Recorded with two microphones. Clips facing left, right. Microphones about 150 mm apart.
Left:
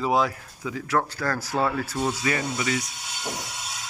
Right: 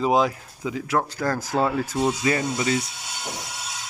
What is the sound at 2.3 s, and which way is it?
Speech, 30° right (ahead or behind).